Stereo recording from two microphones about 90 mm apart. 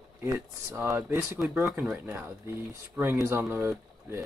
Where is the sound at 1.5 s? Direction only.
15° right (ahead or behind).